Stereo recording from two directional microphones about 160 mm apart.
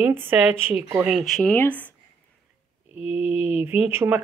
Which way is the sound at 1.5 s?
10° left (ahead or behind).